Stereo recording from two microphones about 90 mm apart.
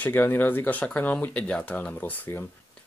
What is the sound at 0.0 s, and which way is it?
Speech, 20° left (ahead or behind).